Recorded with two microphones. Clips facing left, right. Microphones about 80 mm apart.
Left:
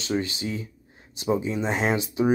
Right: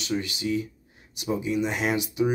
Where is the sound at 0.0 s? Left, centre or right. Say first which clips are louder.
Left 1 dB; left.